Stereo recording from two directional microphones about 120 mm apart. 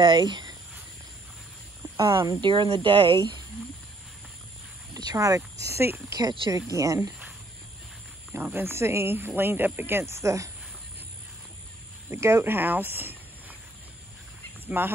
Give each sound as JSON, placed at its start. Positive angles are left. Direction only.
{"t": 0.0, "sound": "speech", "side_deg": -40}
{"t": 2.4, "sound": "speech", "side_deg": -45}
{"t": 4.9, "sound": "speech", "side_deg": -30}
{"t": 8.3, "sound": "speech", "side_deg": -20}
{"t": 12.1, "sound": "speech", "side_deg": -20}
{"t": 14.7, "sound": "speech", "side_deg": -15}